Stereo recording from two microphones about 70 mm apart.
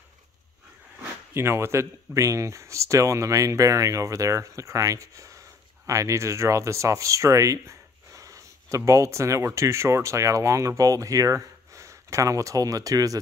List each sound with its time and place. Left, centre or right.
1.3 s speech: right